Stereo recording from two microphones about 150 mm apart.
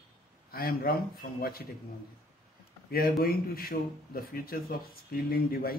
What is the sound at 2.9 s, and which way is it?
A man's voice, 80° left.